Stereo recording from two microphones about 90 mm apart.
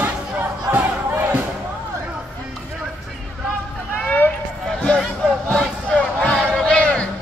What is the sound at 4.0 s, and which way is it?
Run, 15° left (ahead or behind).